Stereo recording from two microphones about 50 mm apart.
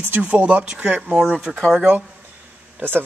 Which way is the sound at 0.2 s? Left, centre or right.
Right.